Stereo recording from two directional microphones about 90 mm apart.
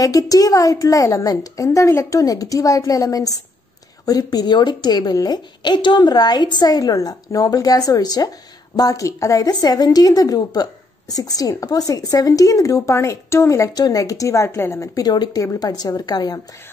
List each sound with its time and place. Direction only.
0.0 s a woman's voice: 40° left (ahead or behind)
13.7 s a woman's voice: 45° left (ahead or behind)